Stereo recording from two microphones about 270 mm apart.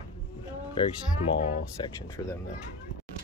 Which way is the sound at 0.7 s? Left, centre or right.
Centre.